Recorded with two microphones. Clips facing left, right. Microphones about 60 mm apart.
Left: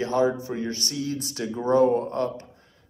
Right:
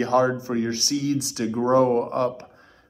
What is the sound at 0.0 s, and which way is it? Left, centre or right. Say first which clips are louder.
Speech: right 3 dB; right.